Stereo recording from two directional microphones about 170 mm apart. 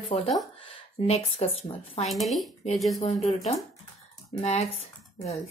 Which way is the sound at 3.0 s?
40° left (ahead or behind).